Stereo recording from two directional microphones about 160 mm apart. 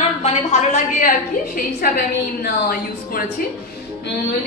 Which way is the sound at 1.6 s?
65° left (ahead or behind).